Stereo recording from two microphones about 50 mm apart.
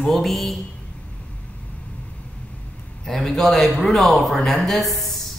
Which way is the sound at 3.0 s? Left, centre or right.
Centre.